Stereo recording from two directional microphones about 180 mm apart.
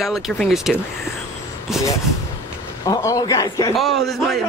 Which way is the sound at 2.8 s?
20° left (ahead or behind).